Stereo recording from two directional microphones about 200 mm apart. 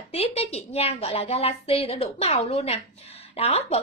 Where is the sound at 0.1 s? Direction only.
30° left (ahead or behind).